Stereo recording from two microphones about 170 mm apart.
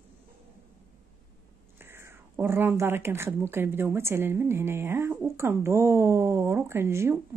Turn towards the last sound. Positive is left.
turn(degrees=-15)  # may be behind; listen again after turning